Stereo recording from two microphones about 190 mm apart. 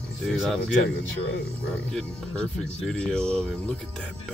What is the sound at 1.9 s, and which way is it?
Speech, 5° left (ahead or behind).